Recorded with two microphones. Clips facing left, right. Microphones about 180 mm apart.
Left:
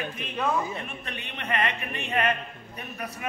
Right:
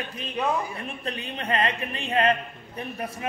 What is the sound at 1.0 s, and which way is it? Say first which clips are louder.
A man's voice: right 6 dB; 30° right (ahead or behind).